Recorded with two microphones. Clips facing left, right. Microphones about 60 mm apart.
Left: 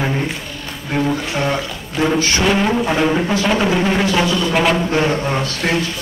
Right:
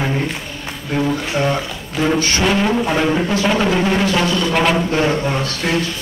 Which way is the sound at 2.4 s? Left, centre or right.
Centre.